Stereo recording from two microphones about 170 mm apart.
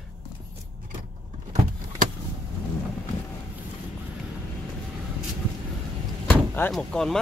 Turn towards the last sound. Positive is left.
turn(degrees=5)  # may be behind; listen again after turning